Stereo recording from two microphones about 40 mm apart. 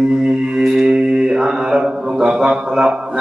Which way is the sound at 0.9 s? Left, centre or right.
Right.